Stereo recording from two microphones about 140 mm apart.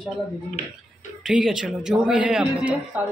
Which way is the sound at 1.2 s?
5° right (ahead or behind).